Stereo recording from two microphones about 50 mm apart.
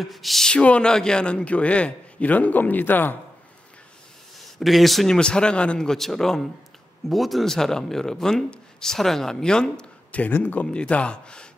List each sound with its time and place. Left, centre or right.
0.0 s speech: centre
0.5 s a man's voice: left
4.6 s speech: centre
5.0 s a man's voice: centre
5.9 s a man's voice: centre